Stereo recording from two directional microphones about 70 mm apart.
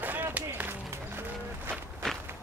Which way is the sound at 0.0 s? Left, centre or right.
Right.